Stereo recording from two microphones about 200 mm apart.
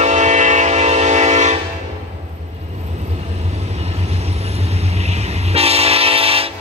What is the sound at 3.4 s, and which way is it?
Vehicle, 35° right (ahead or behind).